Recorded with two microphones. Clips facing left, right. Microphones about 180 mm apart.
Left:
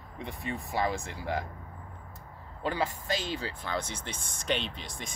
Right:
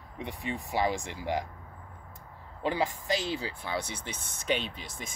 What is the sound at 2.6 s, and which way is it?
Speech, 15° right (ahead or behind).